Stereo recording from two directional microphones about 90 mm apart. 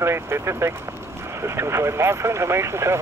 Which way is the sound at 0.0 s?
30° right (ahead or behind).